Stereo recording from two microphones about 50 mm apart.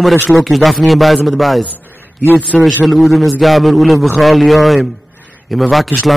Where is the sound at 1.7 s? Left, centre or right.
Left.